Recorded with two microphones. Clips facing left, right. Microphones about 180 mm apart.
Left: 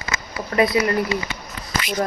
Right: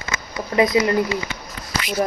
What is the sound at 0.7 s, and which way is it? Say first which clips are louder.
Speech: right 2 dB; 20° right (ahead or behind).